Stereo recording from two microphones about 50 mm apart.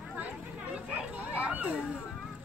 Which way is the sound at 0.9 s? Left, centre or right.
Right.